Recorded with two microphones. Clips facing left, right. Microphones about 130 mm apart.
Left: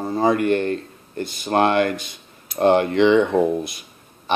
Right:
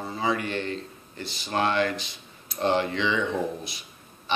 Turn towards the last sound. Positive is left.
turn(degrees=55)  # may be behind; listen again after turning